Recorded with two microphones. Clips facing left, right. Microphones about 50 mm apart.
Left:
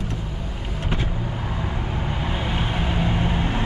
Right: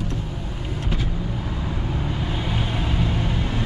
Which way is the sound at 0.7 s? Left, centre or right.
Left.